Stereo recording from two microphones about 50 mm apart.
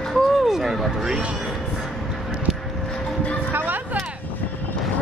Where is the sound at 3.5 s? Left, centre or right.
Right.